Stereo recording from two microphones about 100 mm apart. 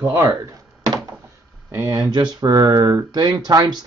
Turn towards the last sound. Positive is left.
turn(degrees=-40)  # may be behind; listen again after turning